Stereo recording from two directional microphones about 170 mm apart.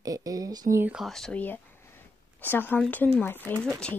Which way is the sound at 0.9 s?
Centre (ahead or behind).